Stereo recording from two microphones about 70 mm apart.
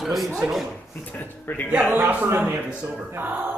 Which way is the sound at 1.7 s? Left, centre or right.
Right.